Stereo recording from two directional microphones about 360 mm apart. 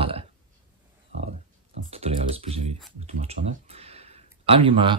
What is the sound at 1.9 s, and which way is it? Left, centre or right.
Speech, centre.